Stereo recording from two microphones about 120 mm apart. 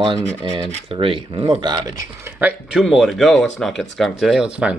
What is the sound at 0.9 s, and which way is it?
Speech, 45° right (ahead or behind).